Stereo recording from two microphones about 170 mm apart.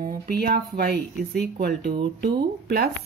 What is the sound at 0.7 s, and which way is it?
A woman's voice, 65° right (ahead or behind).